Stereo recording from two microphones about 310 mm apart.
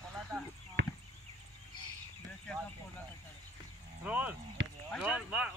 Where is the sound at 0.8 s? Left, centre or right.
Right.